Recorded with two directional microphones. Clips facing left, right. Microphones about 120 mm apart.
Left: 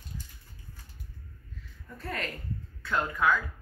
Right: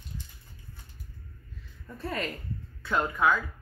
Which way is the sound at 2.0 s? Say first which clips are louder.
Right 3 dB; 20° right (ahead or behind).